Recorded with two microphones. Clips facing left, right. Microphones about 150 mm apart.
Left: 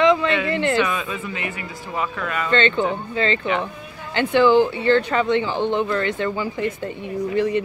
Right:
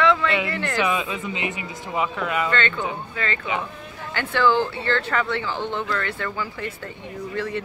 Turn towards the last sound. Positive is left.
turn(degrees=20)  # may be behind; listen again after turning